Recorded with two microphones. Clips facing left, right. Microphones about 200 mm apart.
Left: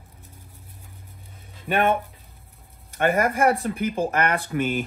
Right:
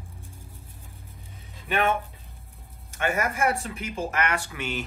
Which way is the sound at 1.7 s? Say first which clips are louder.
Left 4 dB; 50° left (ahead or behind).